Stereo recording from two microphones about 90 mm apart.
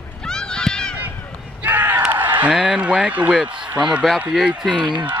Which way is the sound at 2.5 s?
10° right (ahead or behind).